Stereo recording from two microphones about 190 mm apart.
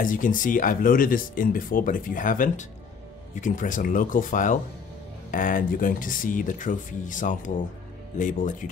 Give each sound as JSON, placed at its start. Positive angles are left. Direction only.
{"t": 0.0, "sound": "speech", "side_deg": 45}